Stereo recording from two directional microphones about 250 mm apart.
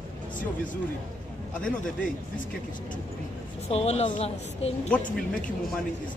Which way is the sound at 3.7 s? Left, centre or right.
Left.